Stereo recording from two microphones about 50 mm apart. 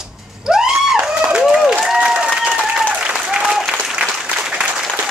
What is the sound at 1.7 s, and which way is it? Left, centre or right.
Applause, centre.